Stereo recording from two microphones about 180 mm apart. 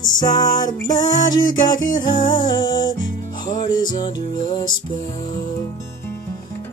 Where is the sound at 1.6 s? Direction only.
25° left (ahead or behind).